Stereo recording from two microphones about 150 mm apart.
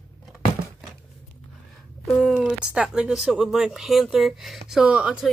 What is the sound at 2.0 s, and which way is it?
Speech, centre (ahead or behind).